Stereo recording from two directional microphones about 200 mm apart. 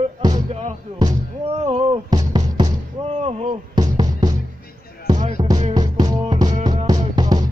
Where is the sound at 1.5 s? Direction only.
35° right (ahead or behind).